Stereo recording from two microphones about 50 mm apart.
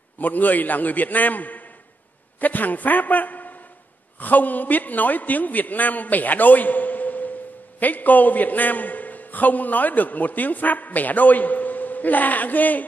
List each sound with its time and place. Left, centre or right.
0.2 s a man's voice: left